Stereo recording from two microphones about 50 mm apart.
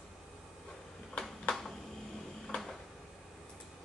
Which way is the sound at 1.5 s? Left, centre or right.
Centre.